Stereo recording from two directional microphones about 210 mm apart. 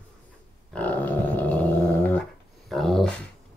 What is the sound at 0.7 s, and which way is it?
Dog, 5° left (ahead or behind).